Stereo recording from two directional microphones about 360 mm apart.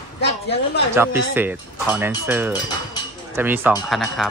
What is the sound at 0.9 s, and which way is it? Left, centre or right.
Speech, centre.